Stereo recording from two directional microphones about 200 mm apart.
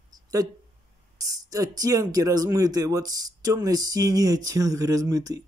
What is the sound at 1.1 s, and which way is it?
Speech, 20° right (ahead or behind).